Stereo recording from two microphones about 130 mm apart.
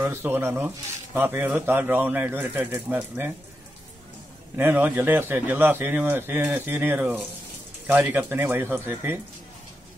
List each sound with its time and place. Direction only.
0.0 s speech: 20° right (ahead or behind)
4.6 s speech: 15° right (ahead or behind)